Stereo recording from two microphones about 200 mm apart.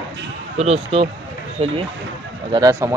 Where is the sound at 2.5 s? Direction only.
20° right (ahead or behind).